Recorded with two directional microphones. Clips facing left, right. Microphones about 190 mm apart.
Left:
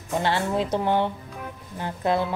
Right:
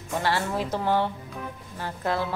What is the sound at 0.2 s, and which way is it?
A woman's voice, 20° left (ahead or behind).